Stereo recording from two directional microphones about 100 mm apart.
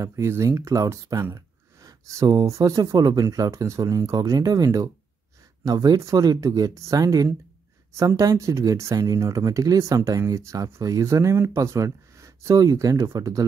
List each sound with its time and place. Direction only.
0.0 s speech: 30° right (ahead or behind)